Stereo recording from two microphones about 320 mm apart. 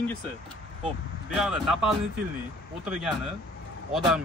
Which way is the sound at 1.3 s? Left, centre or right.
Centre.